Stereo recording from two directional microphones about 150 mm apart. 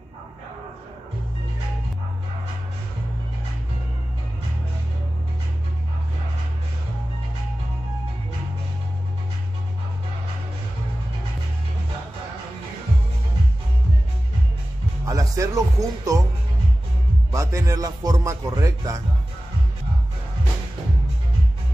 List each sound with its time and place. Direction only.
15.0 s music: 20° right (ahead or behind)
17.3 s speech: 20° right (ahead or behind)